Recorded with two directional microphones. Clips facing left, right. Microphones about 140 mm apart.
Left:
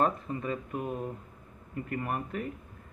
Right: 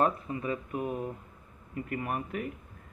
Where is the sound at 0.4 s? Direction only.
5° right (ahead or behind).